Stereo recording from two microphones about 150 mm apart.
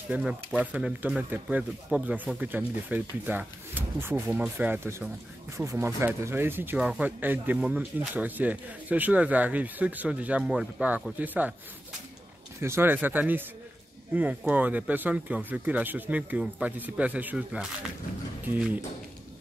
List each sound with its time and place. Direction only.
0.1 s speech: 5° right (ahead or behind)
12.5 s speech: 15° right (ahead or behind)
14.5 s speech: 10° right (ahead or behind)